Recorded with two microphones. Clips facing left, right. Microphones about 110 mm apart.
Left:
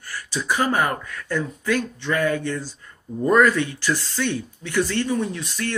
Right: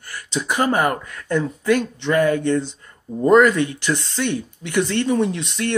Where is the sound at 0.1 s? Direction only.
20° right (ahead or behind).